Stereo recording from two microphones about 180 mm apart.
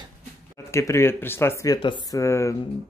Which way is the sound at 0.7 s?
15° left (ahead or behind).